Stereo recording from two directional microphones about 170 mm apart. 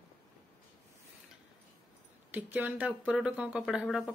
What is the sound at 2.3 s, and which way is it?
Speech, 10° right (ahead or behind).